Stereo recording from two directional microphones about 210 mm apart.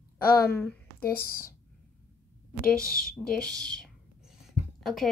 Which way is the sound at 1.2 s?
45° left (ahead or behind).